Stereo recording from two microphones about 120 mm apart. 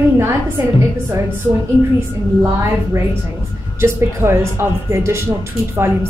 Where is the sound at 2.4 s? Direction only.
25° right (ahead or behind).